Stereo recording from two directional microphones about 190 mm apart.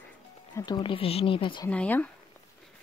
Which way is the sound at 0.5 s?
20° left (ahead or behind).